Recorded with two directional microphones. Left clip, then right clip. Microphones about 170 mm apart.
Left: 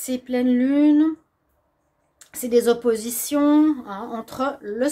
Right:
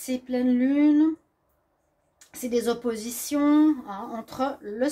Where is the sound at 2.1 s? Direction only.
20° left (ahead or behind).